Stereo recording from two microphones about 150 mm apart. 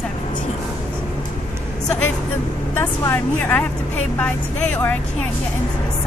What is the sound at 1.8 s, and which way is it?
A woman's voice, 5° left (ahead or behind).